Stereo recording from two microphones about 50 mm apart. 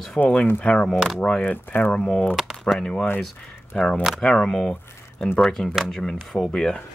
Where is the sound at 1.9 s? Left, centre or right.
Centre.